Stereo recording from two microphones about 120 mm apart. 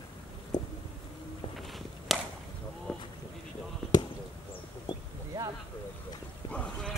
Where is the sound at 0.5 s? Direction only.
30° left (ahead or behind).